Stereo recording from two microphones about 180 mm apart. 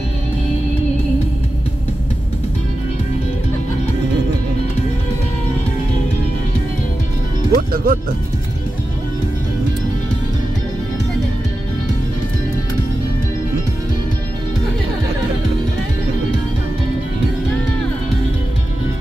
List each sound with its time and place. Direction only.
7.5 s music: 55° right (ahead or behind)